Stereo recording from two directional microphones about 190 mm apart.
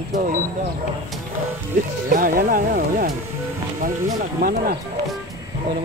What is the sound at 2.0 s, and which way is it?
Speech, 50° right (ahead or behind).